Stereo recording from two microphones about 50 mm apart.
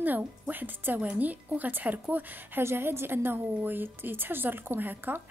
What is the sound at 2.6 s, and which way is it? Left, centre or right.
A woman's voice, right.